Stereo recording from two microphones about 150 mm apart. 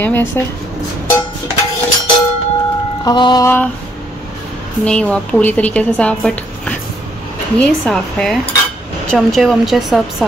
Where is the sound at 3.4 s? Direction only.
15° left (ahead or behind).